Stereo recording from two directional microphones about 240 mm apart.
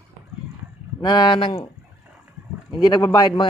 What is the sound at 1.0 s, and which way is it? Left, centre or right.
Speech, centre.